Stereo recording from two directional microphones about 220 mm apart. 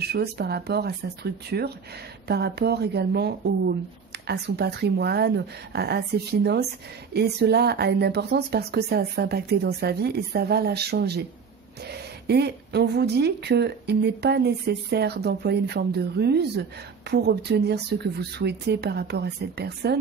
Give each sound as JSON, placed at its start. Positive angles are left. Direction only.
{"t": 0.0, "sound": "speech", "side_deg": -45}